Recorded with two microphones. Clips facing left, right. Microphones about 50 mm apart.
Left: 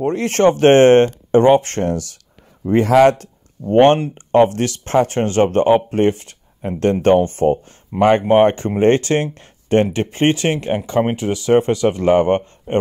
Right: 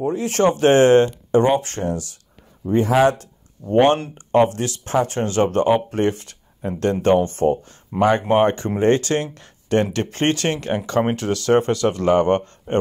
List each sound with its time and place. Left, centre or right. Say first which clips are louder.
0.0 s speech: left 3 dB; left
0.3 s speech: left 4 dB; left
2.6 s speech: left 5 dB; left
3.1 s speech: left 4 dB; left
7.9 s speech: left 3 dB; centre
8.3 s speech: left 4 dB; left
9.9 s speech: left 4 dB; left